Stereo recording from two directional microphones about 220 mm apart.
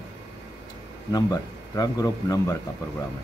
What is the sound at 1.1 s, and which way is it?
Speech, 15° left (ahead or behind).